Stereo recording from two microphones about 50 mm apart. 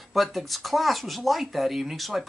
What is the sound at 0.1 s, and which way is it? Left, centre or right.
Speech, centre.